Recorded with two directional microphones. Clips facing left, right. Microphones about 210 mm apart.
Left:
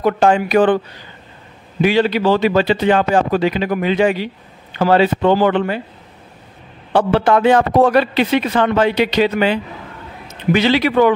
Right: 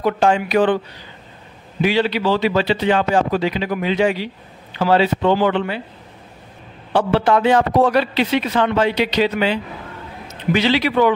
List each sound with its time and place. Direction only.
0.0 s a man's voice: 50° left (ahead or behind)
1.8 s a man's voice: 50° left (ahead or behind)
6.9 s a man's voice: 55° left (ahead or behind)